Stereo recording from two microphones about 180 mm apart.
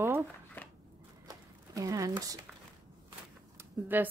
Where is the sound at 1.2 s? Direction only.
20° right (ahead or behind).